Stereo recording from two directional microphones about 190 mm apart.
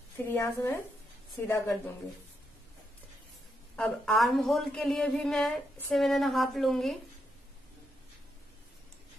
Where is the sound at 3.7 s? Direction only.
5° left (ahead or behind).